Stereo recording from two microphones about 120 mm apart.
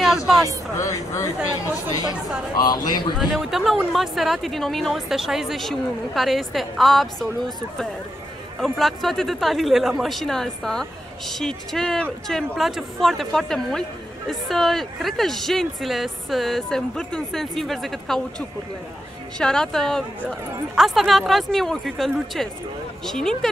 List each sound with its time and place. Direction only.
0.7 s speech: 25° left (ahead or behind)
1.4 s speech: 10° right (ahead or behind)
2.5 s a man's voice: 35° left (ahead or behind)
3.2 s speech: centre (ahead or behind)
19.3 s speech: 5° left (ahead or behind)